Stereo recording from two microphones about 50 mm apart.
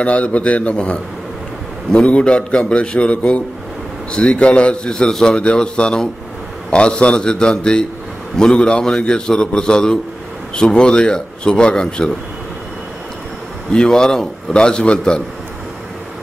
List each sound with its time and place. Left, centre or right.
0.0 s a man's voice: left
2.0 s a man's voice: left
13.7 s speech: centre